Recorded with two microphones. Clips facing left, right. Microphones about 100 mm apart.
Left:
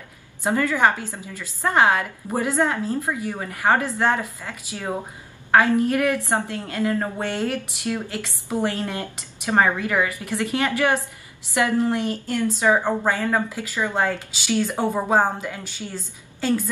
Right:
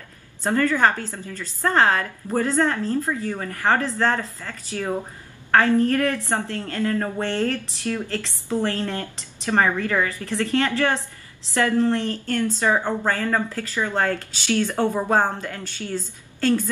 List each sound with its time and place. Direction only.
0.4 s a woman's voice: 10° left (ahead or behind)